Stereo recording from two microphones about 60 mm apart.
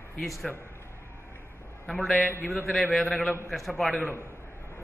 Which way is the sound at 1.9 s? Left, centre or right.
Centre.